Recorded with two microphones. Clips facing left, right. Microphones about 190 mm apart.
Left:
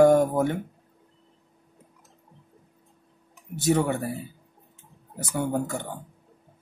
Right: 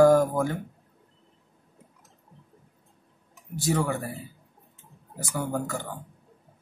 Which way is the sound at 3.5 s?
25° left (ahead or behind).